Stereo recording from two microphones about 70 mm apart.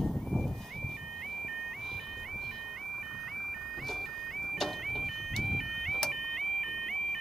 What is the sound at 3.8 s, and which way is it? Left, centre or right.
Vehicle, centre.